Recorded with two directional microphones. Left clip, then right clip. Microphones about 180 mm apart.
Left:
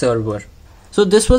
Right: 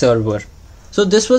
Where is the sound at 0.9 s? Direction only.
15° left (ahead or behind).